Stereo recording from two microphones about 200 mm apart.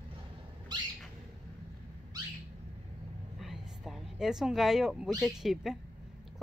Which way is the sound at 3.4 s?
Centre (ahead or behind).